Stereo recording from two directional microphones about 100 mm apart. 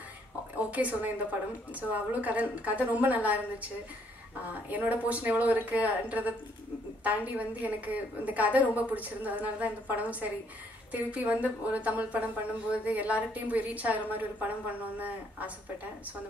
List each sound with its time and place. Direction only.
0.6 s a woman's voice: 15° right (ahead or behind)